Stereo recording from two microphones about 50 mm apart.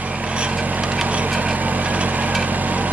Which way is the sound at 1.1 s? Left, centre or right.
Right.